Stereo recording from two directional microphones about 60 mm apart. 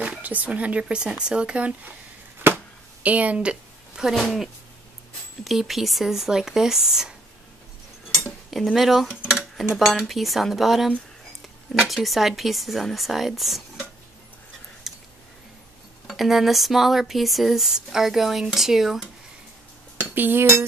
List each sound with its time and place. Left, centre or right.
0.0 s speech: right
2.4 s a sound: right
4.1 s speech: centre
8.5 s speech: centre
14.8 s a sound: centre
16.1 s speech: centre
20.0 s cutlery: right